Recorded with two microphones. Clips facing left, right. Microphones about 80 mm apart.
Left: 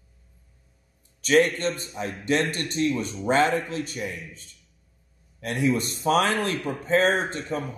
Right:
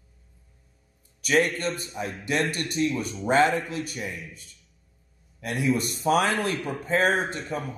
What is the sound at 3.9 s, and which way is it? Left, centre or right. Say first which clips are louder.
Speech: left 2 dB; centre.